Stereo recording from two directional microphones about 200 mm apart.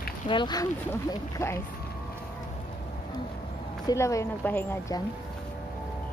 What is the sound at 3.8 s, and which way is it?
A woman's voice, 15° left (ahead or behind).